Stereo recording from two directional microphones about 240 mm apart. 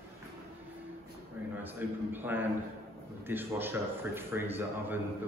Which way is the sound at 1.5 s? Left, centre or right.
Centre.